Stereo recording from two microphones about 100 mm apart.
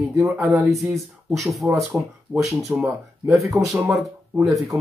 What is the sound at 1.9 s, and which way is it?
Speech, 20° right (ahead or behind).